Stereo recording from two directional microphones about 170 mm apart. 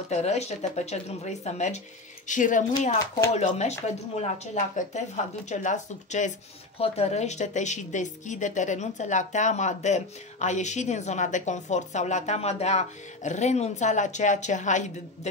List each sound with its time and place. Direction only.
0.1 s a woman's voice: 40° left (ahead or behind)